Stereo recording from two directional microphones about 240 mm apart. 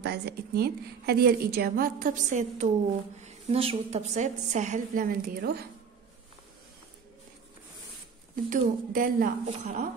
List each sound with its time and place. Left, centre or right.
0.0 s a woman's voice: right
8.5 s a woman's voice: right